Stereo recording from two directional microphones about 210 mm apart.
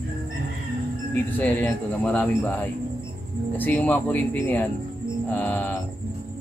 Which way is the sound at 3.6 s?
10° left (ahead or behind).